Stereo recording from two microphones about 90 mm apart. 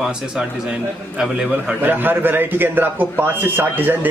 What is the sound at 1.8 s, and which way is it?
A man's voice, 20° right (ahead or behind).